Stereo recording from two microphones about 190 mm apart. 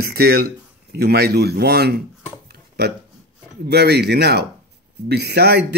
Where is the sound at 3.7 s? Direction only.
60° right (ahead or behind).